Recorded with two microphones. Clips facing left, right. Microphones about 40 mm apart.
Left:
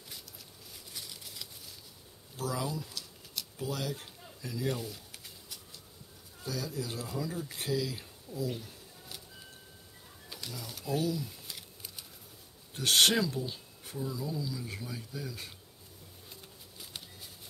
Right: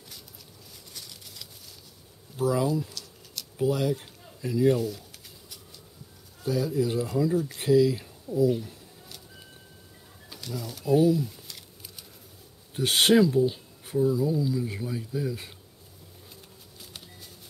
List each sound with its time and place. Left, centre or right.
0.9 s a sound: centre
2.3 s speech: centre
2.9 s a sound: centre
3.5 s speech: centre
4.7 s speech: centre
6.4 s speech: centre
10.3 s speech: centre
10.9 s speech: centre
12.7 s speech: centre